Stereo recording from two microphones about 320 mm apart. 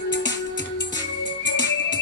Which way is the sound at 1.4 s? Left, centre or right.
Left.